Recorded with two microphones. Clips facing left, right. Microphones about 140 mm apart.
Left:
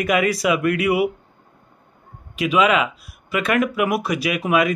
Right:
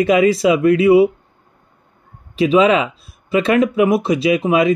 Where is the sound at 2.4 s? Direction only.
30° right (ahead or behind).